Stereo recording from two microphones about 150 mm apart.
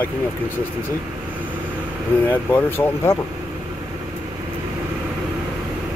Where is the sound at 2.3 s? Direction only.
15° left (ahead or behind).